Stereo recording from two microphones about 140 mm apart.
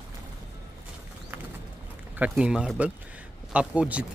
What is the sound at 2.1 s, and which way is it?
Speech, 10° right (ahead or behind).